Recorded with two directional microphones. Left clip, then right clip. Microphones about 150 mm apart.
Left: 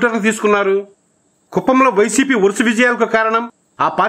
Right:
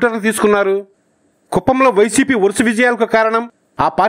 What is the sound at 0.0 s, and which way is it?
Speech, 35° right (ahead or behind).